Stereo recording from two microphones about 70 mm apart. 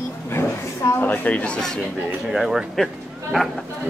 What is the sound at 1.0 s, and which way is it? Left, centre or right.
Speech, left.